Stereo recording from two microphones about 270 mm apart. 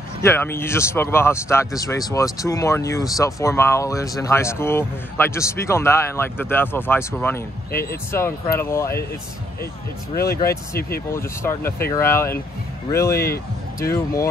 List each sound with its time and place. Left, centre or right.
0.2 s speech: centre
7.7 s speech: left
8.5 s speech: centre
10.1 s speech: left
10.4 s speech: centre
13.1 s speech: left
13.7 s speech: centre